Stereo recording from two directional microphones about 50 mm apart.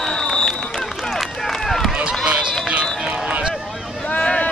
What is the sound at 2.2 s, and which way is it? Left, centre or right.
Run, centre.